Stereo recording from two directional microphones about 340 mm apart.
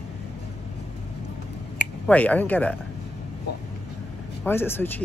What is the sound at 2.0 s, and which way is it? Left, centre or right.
Speech, centre.